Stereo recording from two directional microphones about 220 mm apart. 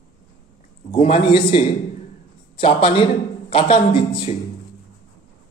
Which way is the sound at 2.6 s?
25° left (ahead or behind).